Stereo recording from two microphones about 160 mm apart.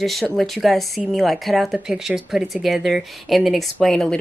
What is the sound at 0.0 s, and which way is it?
Speech, centre (ahead or behind).